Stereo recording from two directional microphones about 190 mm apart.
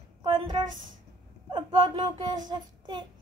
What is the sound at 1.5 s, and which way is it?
Child singing, 25° right (ahead or behind).